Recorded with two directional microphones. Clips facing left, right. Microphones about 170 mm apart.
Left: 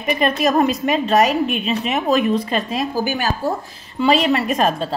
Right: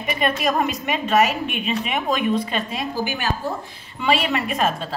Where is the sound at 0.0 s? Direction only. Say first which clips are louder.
Left 4 dB; 40° left (ahead or behind).